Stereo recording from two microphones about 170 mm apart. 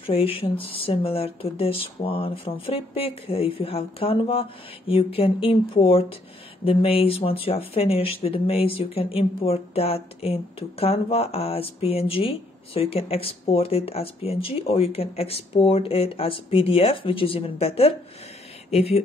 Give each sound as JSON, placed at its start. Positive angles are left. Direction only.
{"t": 0.0, "sound": "speech", "side_deg": 35}